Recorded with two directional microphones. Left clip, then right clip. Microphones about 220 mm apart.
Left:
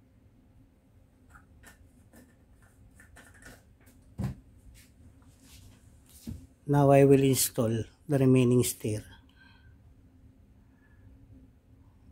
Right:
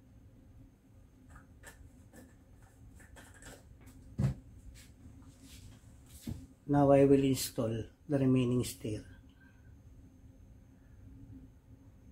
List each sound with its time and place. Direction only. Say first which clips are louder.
6.7 s speech: left 4 dB; 50° left (ahead or behind)